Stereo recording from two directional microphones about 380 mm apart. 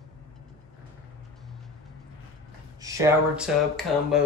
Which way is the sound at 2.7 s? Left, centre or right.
Centre.